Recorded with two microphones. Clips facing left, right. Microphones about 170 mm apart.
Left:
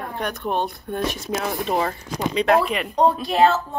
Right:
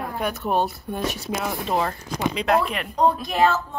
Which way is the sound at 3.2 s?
35° left (ahead or behind).